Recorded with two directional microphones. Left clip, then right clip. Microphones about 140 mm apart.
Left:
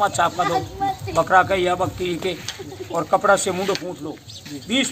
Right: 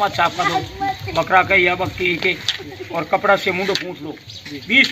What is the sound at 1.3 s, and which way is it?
A man's voice, 20° left (ahead or behind).